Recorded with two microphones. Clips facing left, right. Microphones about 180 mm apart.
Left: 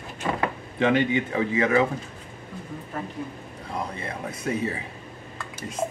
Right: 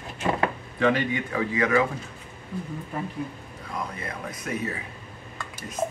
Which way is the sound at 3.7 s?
25° left (ahead or behind).